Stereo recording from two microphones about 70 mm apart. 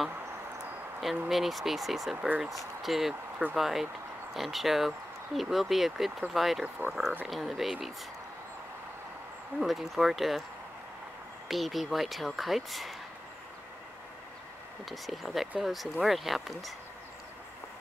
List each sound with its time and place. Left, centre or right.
1.3 s speech: centre
2.1 s speech: right
2.5 s speech: centre
9.6 s speech: centre
11.4 s speech: centre
14.9 s speech: centre